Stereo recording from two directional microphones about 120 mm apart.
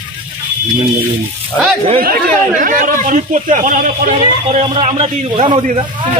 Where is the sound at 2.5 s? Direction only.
90° right; by 4.7 s 65° right (ahead or behind).